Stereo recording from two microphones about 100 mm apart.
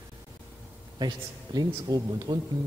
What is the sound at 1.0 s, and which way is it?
A man's voice, 45° right (ahead or behind).